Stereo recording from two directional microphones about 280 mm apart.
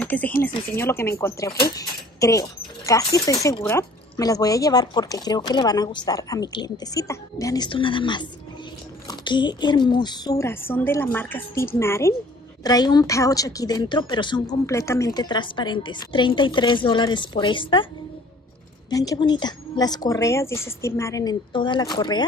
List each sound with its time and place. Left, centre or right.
0.0 s speech: centre
1.8 s a sound: centre
2.9 s speech: centre
18.9 s speech: centre